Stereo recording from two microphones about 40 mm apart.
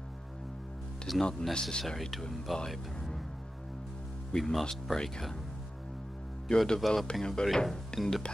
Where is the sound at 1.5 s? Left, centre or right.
Left.